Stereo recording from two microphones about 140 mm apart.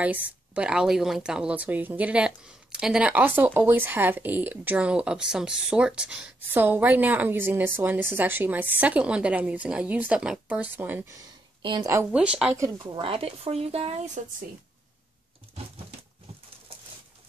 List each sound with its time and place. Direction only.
0.0 s speech: 10° right (ahead or behind)
11.1 s a sound: 30° right (ahead or behind)
11.9 s speech: 15° right (ahead or behind)
12.8 s speech: 35° right (ahead or behind); by 14.2 s 55° right (ahead or behind)